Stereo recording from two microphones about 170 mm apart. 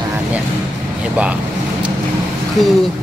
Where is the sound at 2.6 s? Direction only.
Centre (ahead or behind).